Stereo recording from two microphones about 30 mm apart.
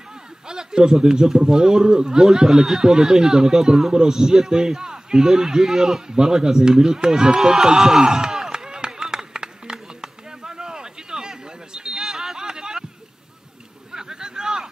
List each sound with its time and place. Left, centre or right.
0.5 s a man's voice: right
7.5 s chop: centre
12.4 s a sound: right
13.9 s vehicle: right